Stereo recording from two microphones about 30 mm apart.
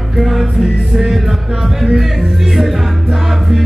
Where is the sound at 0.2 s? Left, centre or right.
Centre.